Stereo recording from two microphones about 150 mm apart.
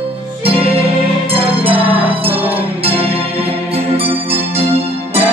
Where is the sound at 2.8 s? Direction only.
40° right (ahead or behind).